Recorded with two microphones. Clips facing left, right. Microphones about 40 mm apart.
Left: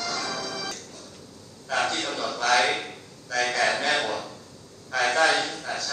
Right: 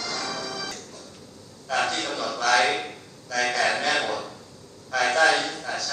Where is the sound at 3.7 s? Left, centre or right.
Left.